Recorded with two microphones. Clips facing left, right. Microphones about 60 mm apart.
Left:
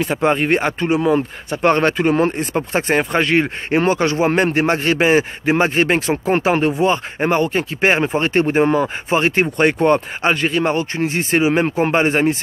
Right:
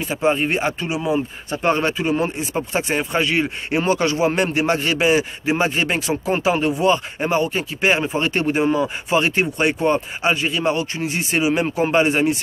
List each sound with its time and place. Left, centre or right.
0.0 s speech: left
2.5 s speech: left